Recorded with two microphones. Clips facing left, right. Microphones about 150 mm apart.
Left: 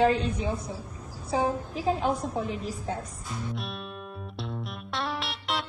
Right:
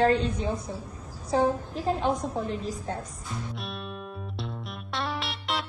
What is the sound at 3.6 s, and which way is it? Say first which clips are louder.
Music: even; centre (ahead or behind).